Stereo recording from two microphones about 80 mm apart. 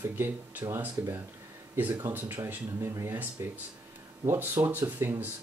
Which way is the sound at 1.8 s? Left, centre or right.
Right.